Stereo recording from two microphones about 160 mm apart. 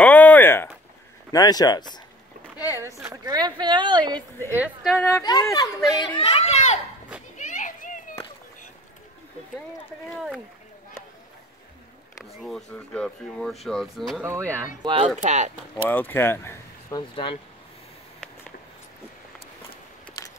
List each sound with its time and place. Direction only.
0.0 s a sound: 10° left (ahead or behind)
1.3 s speech: 25° left (ahead or behind)
2.5 s rowboat: 15° right (ahead or behind)
3.0 s speech: 20° right (ahead or behind)
4.5 s a woman's voice: 10° right (ahead or behind)
5.2 s speech: 25° left (ahead or behind); by 6.8 s 40° left (ahead or behind)
7.3 s a sound: 55° left (ahead or behind)
10.1 s speech: centre (ahead or behind)
12.3 s speech: centre (ahead or behind)
14.2 s a woman's voice: 15° right (ahead or behind)
14.8 s speech: 35° right (ahead or behind)
15.2 s speech: 50° right (ahead or behind)
15.9 s speech: 10° left (ahead or behind)
17.1 s speech: 35° left (ahead or behind)